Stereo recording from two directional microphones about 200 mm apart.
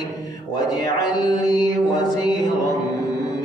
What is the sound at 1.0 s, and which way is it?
Music, 20° left (ahead or behind).